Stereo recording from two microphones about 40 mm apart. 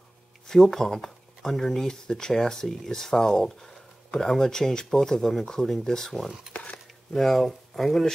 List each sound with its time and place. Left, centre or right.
0.5 s speech: centre
6.5 s a sound: left
7.1 s speech: centre